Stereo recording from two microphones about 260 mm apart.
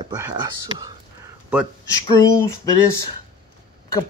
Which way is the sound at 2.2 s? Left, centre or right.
Centre.